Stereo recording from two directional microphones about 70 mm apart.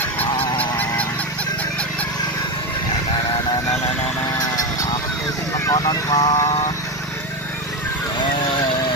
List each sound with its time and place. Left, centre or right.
0.6 s goose: left
5.7 s vehicle: left